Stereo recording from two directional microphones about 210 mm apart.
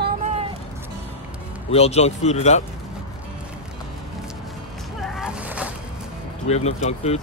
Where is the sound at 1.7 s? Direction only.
30° left (ahead or behind).